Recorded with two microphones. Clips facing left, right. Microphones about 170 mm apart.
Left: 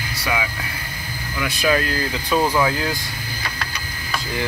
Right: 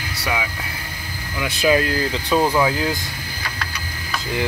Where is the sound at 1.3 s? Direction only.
20° right (ahead or behind).